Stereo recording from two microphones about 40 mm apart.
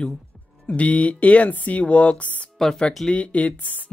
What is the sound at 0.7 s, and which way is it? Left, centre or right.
Speech, left.